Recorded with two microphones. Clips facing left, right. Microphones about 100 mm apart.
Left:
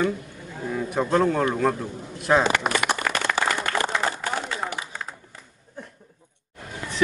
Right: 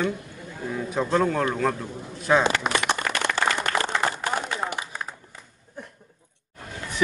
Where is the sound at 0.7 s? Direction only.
5° left (ahead or behind).